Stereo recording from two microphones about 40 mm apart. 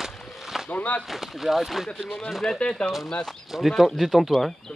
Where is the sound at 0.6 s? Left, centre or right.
Left.